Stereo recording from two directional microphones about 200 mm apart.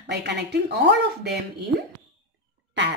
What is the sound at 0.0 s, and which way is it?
A woman's voice, 60° right (ahead or behind).